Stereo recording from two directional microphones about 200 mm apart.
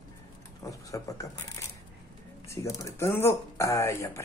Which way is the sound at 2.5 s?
15° left (ahead or behind).